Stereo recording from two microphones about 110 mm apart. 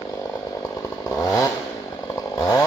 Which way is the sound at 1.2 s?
30° left (ahead or behind).